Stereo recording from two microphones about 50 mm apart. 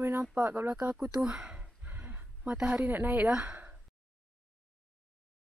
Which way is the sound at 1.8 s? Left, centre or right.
Right.